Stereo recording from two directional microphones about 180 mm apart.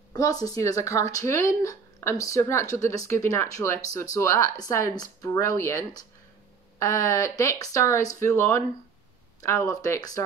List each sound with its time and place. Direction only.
0.1 s a woman's voice: 20° left (ahead or behind)